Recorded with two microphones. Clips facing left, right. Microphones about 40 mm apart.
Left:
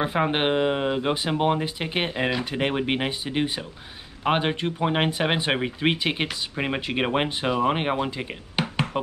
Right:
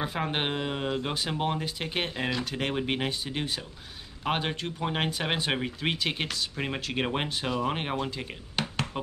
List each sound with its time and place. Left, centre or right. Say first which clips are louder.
0.0 s speech: left 7 dB; left